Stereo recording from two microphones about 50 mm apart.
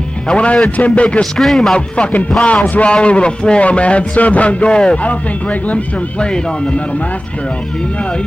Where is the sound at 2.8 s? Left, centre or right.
Left.